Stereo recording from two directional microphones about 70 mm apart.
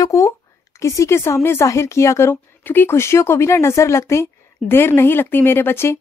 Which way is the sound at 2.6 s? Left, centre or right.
Left.